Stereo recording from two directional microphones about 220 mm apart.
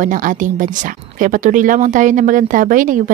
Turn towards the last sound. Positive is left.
turn(degrees=-35)  # may be behind; listen again after turning